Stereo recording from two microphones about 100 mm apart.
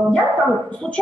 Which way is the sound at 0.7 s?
10° left (ahead or behind).